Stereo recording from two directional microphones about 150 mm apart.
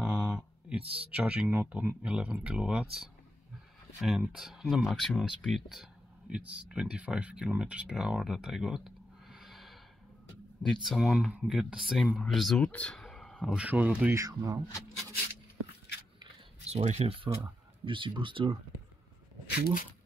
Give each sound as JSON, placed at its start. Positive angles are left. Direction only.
{"t": 0.0, "sound": "speech", "side_deg": -5}
{"t": 16.6, "sound": "speech", "side_deg": -45}
{"t": 19.5, "sound": "speech", "side_deg": 85}